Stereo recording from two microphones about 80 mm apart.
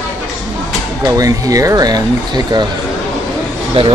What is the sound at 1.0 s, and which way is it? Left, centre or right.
Speech, right.